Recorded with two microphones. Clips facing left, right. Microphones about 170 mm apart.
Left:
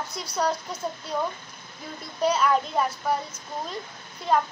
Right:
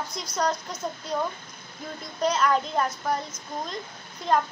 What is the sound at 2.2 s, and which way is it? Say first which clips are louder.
A child's voice: left 1 dB; 5° left (ahead or behind).